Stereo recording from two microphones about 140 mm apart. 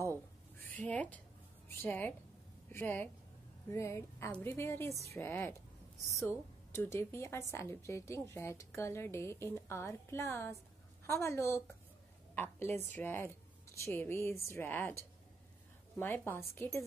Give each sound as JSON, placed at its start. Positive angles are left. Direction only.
{"t": 0.7, "sound": "a woman's voice", "side_deg": 10}